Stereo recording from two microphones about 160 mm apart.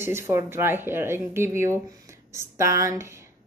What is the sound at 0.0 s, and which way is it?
Speech, 15° right (ahead or behind).